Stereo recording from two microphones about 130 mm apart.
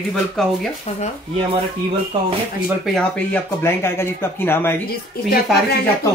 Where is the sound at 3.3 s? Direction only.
20° left (ahead or behind).